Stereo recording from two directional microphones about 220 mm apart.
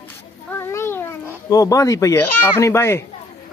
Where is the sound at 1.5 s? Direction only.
15° left (ahead or behind).